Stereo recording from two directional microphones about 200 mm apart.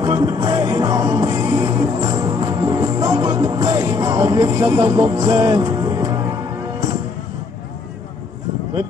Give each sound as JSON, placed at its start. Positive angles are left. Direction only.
{"t": 0.0, "sound": "music", "side_deg": -20}